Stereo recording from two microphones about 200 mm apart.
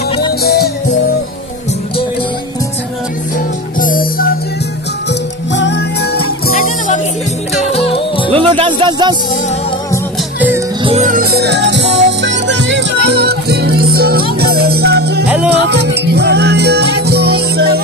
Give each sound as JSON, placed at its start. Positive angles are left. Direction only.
{"t": 0.4, "sound": "music", "side_deg": 50}
{"t": 3.8, "sound": "music", "side_deg": 45}
{"t": 5.5, "sound": "music", "side_deg": 60}
{"t": 7.7, "sound": "music", "side_deg": 30}
{"t": 8.5, "sound": "speech", "side_deg": -25}
{"t": 10.8, "sound": "music", "side_deg": -30}
{"t": 11.1, "sound": "music", "side_deg": -45}
{"t": 15.2, "sound": "music", "side_deg": -5}
{"t": 15.7, "sound": "music", "side_deg": -55}